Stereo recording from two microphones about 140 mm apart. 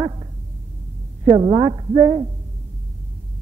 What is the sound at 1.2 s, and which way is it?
Speech, 30° right (ahead or behind).